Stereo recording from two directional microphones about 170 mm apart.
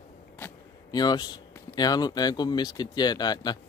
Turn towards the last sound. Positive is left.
turn(degrees=25)  # may be behind; listen again after turning